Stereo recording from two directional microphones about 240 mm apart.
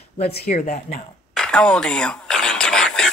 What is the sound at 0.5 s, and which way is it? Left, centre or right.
Speech, left.